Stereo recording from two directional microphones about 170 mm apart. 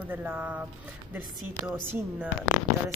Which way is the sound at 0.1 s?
10° right (ahead or behind).